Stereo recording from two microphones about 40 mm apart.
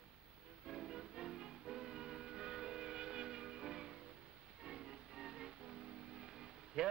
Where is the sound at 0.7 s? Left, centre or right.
Centre.